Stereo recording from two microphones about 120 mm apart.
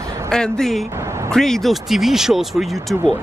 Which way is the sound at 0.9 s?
25° right (ahead or behind).